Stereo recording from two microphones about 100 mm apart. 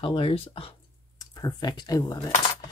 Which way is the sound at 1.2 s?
40° left (ahead or behind).